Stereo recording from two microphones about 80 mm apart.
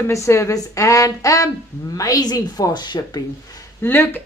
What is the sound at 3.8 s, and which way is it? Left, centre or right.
Speech, left.